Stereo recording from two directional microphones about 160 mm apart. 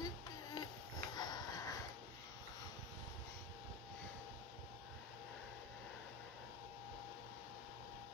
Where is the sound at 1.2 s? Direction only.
25° left (ahead or behind).